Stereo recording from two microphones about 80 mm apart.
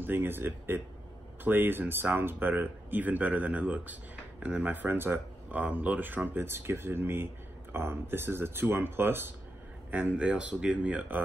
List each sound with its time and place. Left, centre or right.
0.0 s speech: right